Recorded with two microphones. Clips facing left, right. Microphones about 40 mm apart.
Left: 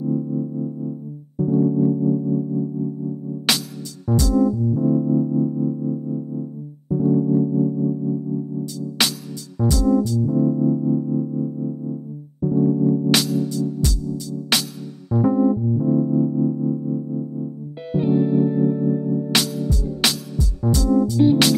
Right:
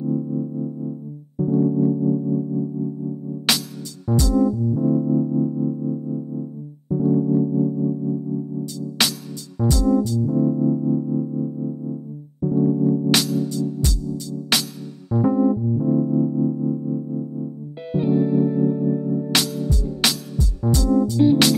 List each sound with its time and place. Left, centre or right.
0.0 s music: centre
4.3 s music: centre
13.3 s music: centre
13.8 s music: centre
15.0 s keyboard: centre
18.2 s music: left
19.0 s music: centre
20.6 s music: centre
21.2 s music: centre